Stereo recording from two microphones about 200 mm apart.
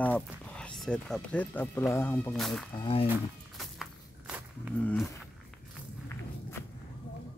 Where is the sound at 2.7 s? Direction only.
25° left (ahead or behind).